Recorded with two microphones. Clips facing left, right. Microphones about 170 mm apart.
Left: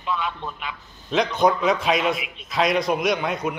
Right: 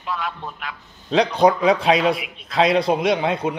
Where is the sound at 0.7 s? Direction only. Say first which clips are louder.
Right 6 dB; 35° right (ahead or behind).